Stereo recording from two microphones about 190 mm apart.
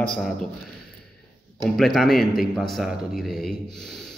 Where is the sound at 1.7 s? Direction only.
Centre (ahead or behind).